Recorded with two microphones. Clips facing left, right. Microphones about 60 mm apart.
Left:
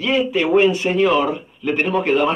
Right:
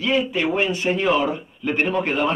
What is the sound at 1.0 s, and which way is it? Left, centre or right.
Speech, centre.